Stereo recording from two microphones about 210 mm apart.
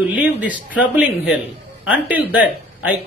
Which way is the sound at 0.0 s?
5° right (ahead or behind).